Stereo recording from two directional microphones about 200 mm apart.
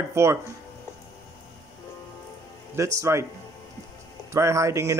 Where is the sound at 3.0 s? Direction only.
15° right (ahead or behind).